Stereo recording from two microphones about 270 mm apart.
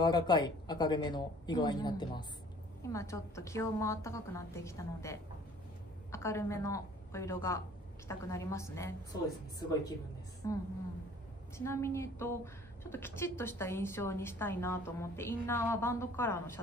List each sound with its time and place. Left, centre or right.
0.0 s a woman's voice: centre